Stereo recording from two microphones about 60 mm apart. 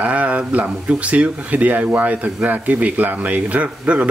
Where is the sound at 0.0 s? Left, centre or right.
Right.